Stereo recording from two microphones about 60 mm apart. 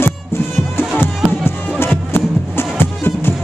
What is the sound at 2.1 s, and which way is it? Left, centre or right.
Music, left.